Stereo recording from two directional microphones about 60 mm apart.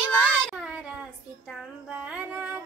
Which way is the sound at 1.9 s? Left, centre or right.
Right.